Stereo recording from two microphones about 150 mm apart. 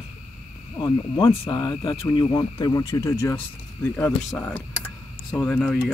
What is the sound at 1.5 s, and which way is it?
Speech, 25° left (ahead or behind).